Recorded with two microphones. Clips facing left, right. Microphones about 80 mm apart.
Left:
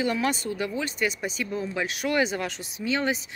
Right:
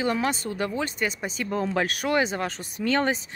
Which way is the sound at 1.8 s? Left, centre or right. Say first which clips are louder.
Right 4 dB; right.